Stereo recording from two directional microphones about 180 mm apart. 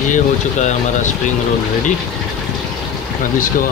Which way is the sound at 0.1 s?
40° left (ahead or behind).